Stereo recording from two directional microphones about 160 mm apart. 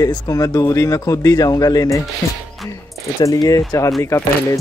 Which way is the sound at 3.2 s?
20° left (ahead or behind).